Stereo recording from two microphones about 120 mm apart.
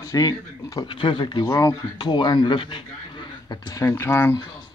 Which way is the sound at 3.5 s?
30° left (ahead or behind).